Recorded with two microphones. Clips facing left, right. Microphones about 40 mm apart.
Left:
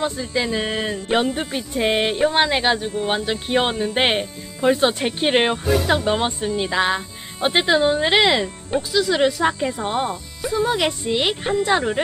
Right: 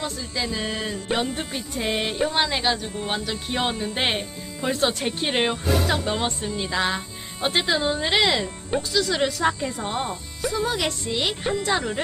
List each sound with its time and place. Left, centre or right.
0.0 s speech: left
8.6 s speech: centre